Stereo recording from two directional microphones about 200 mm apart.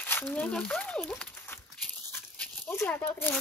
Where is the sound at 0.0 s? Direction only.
10° left (ahead or behind).